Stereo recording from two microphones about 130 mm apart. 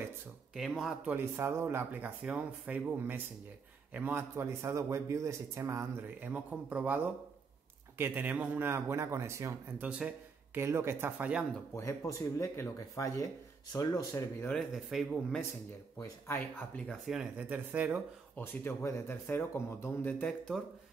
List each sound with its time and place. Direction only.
0.6 s speech: centre (ahead or behind)
1.1 s a man's voice: 20° right (ahead or behind)
8.0 s a man's voice: 15° right (ahead or behind)
9.8 s a sound: 10° right (ahead or behind)
10.6 s speech: 20° right (ahead or behind)
11.7 s speech: 25° left (ahead or behind)
14.5 s speech: centre (ahead or behind)
16.0 s speech: 15° left (ahead or behind)
16.9 s speech: centre (ahead or behind)
18.3 s speech: 15° left (ahead or behind)